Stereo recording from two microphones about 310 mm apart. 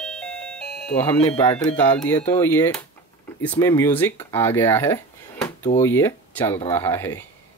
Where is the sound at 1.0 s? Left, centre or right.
Centre.